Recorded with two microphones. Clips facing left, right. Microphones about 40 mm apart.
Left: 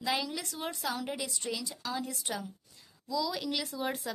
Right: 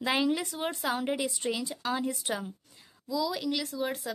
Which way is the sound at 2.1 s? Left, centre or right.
Centre.